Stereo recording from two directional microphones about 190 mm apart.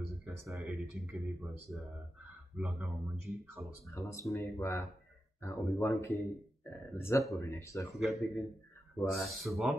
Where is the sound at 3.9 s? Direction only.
15° left (ahead or behind).